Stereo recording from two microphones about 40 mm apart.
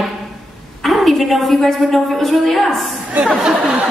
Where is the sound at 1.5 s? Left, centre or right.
Centre.